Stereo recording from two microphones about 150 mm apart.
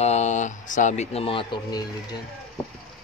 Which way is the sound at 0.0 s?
50° left (ahead or behind).